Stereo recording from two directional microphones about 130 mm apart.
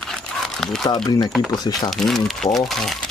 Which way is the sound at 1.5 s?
30° left (ahead or behind).